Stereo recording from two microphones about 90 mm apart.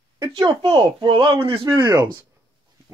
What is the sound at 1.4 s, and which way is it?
Speech, 90° right.